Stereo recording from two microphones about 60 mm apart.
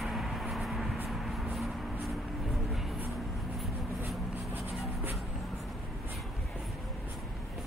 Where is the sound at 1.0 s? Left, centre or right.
Centre.